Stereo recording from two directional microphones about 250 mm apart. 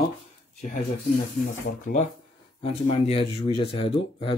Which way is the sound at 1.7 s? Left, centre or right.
Left.